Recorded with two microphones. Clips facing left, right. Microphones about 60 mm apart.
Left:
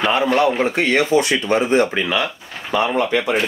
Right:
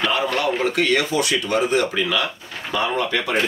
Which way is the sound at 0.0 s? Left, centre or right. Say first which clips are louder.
Left 5 dB; left.